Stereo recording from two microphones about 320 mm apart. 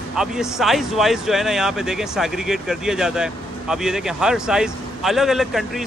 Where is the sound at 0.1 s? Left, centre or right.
Centre.